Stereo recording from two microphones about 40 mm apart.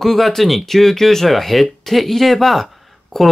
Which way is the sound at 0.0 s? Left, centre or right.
Centre.